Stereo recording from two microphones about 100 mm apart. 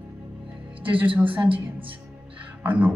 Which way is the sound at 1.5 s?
65° right (ahead or behind).